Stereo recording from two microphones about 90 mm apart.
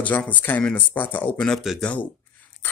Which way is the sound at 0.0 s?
15° left (ahead or behind).